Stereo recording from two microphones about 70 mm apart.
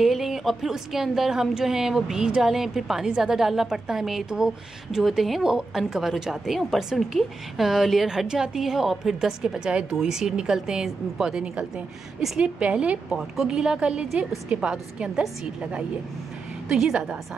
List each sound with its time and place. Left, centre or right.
0.0 s a woman's voice: centre
16.6 s a woman's voice: centre